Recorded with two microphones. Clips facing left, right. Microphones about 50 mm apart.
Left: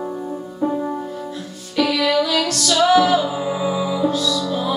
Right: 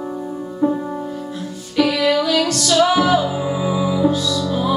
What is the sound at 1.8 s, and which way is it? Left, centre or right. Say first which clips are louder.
Music: right 1 dB; centre.